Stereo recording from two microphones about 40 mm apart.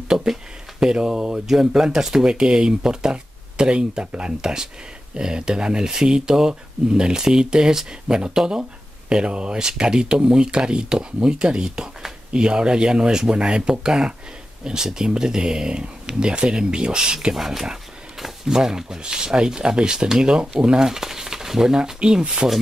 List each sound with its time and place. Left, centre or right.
0.1 s a sound: centre
0.7 s speech: centre
17.4 s speech: centre
22.4 s speech: right